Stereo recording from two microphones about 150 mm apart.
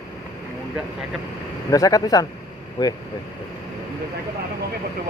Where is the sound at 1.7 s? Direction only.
25° left (ahead or behind).